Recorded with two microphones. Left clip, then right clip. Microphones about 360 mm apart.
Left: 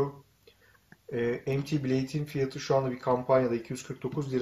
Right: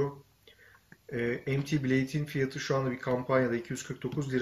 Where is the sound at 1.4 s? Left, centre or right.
Centre.